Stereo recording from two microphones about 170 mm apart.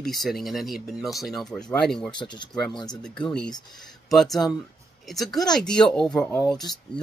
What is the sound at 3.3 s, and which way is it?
Speech, 5° left (ahead or behind).